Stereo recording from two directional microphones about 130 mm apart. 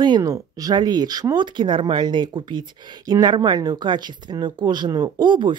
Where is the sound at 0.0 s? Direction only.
30° right (ahead or behind).